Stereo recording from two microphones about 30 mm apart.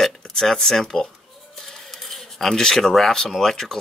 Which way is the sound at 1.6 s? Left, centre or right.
Centre.